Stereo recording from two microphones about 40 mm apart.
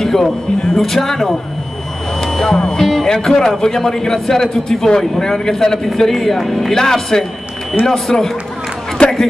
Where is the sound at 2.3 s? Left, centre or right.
Centre.